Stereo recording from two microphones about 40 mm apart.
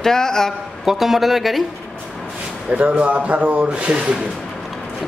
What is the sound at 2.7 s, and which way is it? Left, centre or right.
Speech, right.